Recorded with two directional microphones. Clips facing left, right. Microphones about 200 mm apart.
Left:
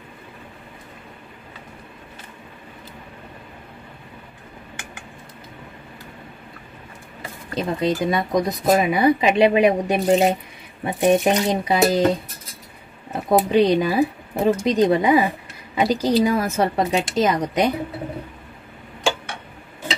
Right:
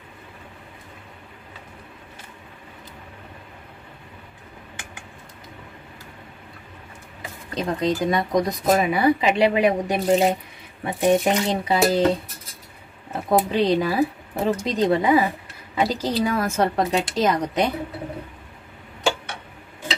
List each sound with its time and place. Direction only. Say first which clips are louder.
7.5 s speech: left 1 dB; 10° left (ahead or behind)
8.7 s speech: left 2 dB; 20° left (ahead or behind)
13.1 s speech: left 3 dB; 15° left (ahead or behind)